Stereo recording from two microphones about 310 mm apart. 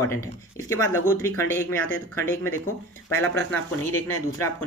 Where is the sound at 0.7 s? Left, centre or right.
Centre.